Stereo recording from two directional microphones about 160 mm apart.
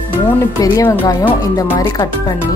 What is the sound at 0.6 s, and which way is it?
Speech, 20° left (ahead or behind).